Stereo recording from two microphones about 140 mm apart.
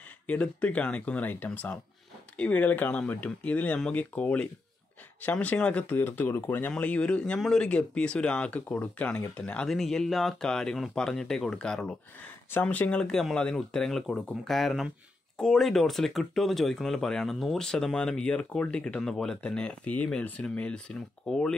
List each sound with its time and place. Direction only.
0.3 s speech: 10° left (ahead or behind)